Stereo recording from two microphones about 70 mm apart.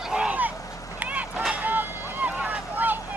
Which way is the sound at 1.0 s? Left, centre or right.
Right.